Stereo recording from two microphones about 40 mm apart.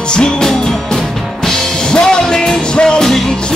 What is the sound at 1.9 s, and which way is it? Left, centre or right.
Music, left.